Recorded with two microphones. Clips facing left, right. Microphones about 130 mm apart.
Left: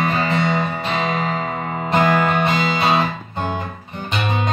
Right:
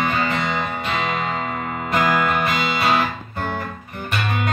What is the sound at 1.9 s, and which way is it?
Music, 25° left (ahead or behind).